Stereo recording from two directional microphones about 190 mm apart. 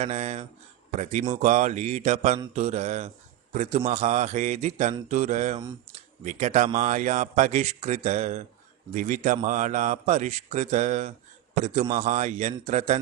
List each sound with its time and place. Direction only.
0.0 s a man's voice: 35° right (ahead or behind)